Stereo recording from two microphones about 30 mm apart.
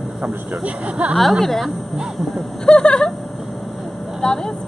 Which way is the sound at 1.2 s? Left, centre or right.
Centre.